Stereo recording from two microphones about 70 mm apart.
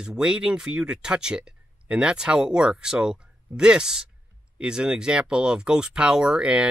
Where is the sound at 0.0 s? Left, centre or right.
Centre.